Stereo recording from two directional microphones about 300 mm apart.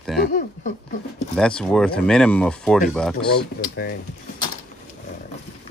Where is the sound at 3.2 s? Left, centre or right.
Centre.